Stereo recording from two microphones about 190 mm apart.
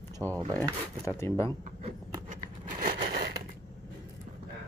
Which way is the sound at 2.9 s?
60° right (ahead or behind).